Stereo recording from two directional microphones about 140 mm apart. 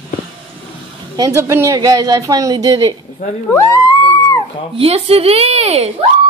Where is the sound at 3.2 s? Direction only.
60° left (ahead or behind).